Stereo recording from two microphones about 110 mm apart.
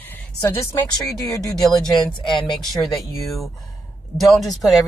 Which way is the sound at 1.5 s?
5° left (ahead or behind).